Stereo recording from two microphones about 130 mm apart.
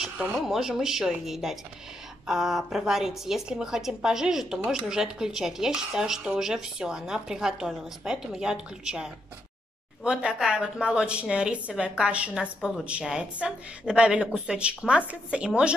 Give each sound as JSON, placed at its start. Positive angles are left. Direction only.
{"t": 0.0, "sound": "a woman's voice", "side_deg": 0}